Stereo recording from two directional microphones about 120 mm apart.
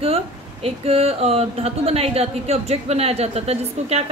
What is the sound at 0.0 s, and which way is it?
A woman's voice, 55° right (ahead or behind).